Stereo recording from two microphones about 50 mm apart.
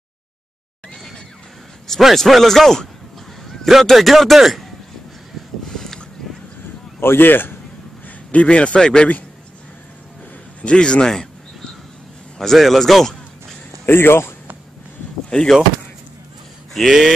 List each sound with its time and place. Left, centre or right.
0.9 s music: centre
1.9 s a man's voice: centre
5.7 s a sound: centre
7.0 s a man's voice: left
8.3 s a man's voice: left
10.6 s a man's voice: left
12.4 s a man's voice: centre
13.8 s a man's voice: left
15.2 s speech: centre